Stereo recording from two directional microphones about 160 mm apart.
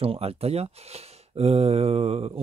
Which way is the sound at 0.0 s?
35° right (ahead or behind).